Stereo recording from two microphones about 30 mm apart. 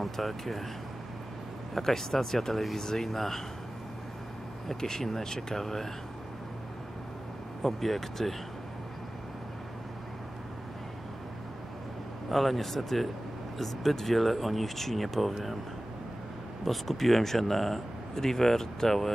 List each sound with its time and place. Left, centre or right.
0.0 s speech: centre
1.7 s speech: centre
4.7 s speech: centre
7.6 s speech: centre
12.3 s speech: centre
16.6 s speech: centre